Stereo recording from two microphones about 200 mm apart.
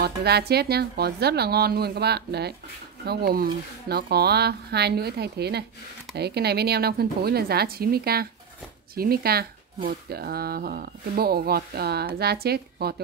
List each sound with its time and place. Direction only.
0.0 s speech: 55° right (ahead or behind)